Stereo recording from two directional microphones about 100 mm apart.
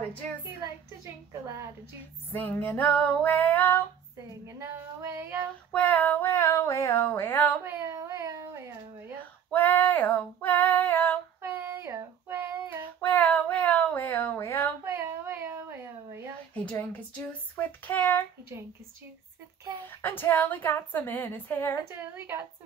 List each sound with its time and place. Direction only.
0.6 s a sound: 35° right (ahead or behind)
2.3 s speech: 20° left (ahead or behind)
4.5 s child singing: 30° right (ahead or behind)
5.7 s female singing: 15° left (ahead or behind)
7.8 s a sound: 35° right (ahead or behind)
9.5 s female singing: 20° left (ahead or behind)
11.4 s a sound: 25° right (ahead or behind)
13.0 s child singing: 15° left (ahead or behind)
14.9 s a sound: 20° right (ahead or behind)
16.5 s speech: 15° left (ahead or behind)
19.9 s speech: 20° left (ahead or behind)
21.8 s child singing: 25° right (ahead or behind)